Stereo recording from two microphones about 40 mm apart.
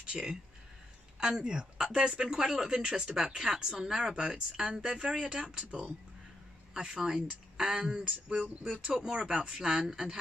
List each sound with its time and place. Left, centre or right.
0.0 s speech: centre
4.1 s speech: right
4.7 s speech: centre
5.5 s speech: right
6.7 s speech: centre
7.2 s a woman's voice: right
7.6 s speech: centre
8.0 s speech: right; by 10.1 s centre